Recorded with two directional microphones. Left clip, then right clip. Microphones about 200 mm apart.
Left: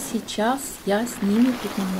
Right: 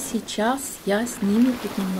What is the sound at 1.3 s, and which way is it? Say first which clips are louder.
Speech: even; 30° left (ahead or behind).